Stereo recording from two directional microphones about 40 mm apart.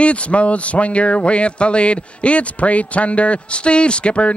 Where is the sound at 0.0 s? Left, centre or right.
Left.